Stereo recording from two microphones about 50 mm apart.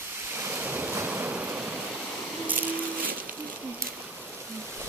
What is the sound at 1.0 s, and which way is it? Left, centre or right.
Waves, right.